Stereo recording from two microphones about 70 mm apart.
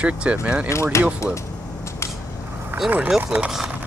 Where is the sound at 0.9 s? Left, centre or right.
Left.